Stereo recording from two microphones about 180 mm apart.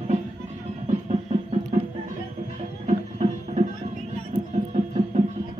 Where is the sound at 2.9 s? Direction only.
40° right (ahead or behind).